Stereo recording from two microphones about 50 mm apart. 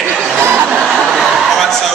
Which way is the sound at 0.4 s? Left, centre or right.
Right.